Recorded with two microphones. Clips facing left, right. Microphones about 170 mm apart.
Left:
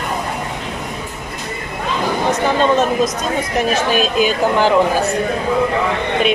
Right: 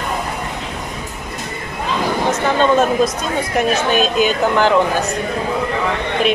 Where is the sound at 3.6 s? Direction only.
5° left (ahead or behind).